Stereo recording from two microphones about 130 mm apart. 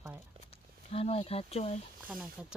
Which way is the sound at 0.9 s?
50° left (ahead or behind).